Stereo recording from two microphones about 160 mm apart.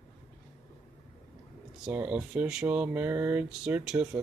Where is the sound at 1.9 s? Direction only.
5° right (ahead or behind).